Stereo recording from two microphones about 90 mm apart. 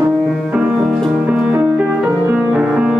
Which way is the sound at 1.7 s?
10° right (ahead or behind).